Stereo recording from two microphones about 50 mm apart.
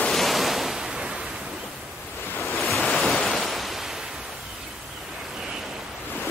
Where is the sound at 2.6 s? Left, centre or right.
Centre.